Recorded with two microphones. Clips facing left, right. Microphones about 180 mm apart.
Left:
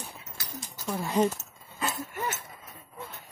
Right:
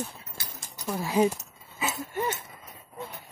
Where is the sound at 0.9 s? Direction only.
5° right (ahead or behind).